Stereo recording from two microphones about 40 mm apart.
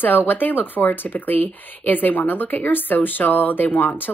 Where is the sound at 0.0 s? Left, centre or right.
Left.